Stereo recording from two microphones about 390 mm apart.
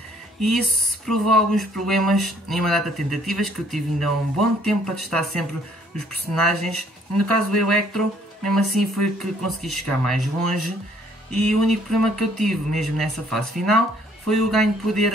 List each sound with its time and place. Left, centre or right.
0.4 s speech: centre